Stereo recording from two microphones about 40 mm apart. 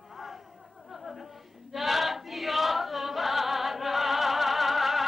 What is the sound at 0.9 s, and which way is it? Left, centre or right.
Choir, centre.